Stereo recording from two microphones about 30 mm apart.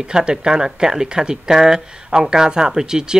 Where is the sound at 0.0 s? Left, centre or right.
Right.